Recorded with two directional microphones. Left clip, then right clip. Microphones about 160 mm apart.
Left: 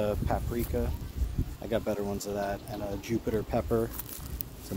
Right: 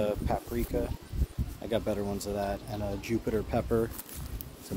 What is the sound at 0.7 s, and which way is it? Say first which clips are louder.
Speech: right 1 dB; 25° right (ahead or behind).